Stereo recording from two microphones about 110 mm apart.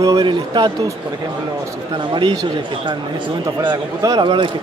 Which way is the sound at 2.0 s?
45° right (ahead or behind).